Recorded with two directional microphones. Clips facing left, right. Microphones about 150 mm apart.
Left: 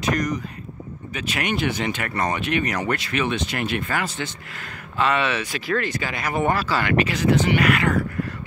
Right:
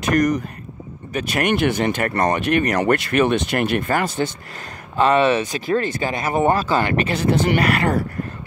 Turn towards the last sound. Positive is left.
turn(degrees=-35)  # may be behind; listen again after turning